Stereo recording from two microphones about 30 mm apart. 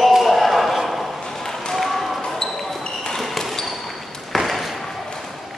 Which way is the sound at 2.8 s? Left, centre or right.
Left.